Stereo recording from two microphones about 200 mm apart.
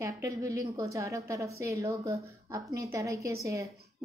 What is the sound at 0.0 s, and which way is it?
A woman's voice, 15° right (ahead or behind).